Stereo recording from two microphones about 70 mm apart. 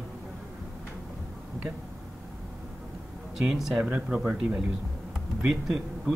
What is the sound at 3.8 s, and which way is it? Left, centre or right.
Speech, right.